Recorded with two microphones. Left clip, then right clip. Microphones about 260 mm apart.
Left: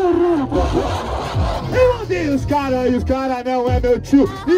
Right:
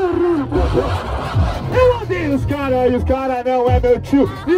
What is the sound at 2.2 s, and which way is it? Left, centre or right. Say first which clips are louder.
Speech: left 2 dB; centre.